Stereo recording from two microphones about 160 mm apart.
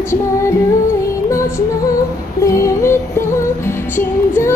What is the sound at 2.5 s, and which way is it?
Yodeling, 20° left (ahead or behind).